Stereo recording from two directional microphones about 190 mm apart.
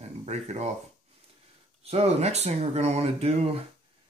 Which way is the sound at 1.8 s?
35° right (ahead or behind).